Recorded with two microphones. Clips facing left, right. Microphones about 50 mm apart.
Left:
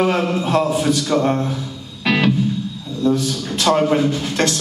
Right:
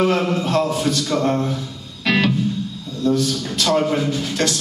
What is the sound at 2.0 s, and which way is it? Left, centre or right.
Music, centre.